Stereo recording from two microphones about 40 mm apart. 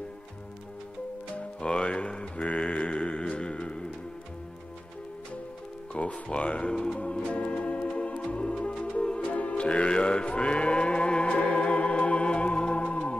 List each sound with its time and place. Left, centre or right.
1.6 s mantra: left
6.2 s speech: left
7.0 s organ: left
8.3 s music: left